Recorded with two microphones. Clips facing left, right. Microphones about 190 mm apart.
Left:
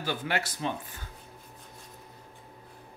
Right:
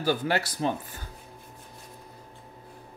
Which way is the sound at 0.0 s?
35° right (ahead or behind).